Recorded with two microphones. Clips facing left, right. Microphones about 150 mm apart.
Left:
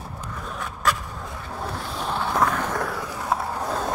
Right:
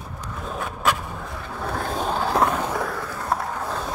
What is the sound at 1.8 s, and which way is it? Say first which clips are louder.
Skateboard: right 4 dB; 45° right (ahead or behind).